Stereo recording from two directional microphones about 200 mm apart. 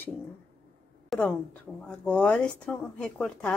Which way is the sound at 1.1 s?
Centre (ahead or behind).